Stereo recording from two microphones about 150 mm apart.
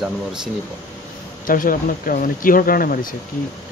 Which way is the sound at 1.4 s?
65° left (ahead or behind).